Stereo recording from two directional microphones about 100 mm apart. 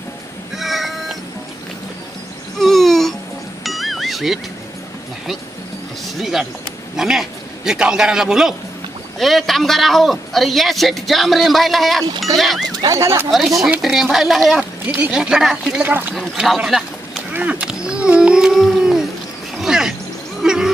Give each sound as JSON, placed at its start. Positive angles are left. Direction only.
{"t": 0.6, "sound": "cat", "side_deg": 0}
{"t": 2.6, "sound": "babbling", "side_deg": 0}
{"t": 3.6, "sound": "music", "side_deg": 0}
{"t": 6.1, "sound": "a man's voice", "side_deg": 0}
{"t": 12.8, "sound": "speech", "side_deg": -30}
{"t": 13.3, "sound": "a man's voice", "side_deg": 0}
{"t": 15.8, "sound": "speech", "side_deg": -20}
{"t": 16.2, "sound": "speech", "side_deg": 0}
{"t": 17.3, "sound": "a sound", "side_deg": -15}